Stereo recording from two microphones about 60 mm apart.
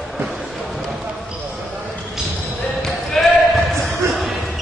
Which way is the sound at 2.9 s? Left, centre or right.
Centre.